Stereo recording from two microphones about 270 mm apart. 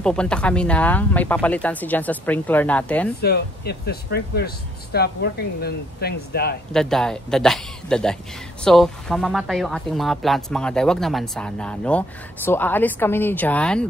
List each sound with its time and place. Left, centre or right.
0.0 s speech: centre
3.2 s speech: left
6.7 s speech: centre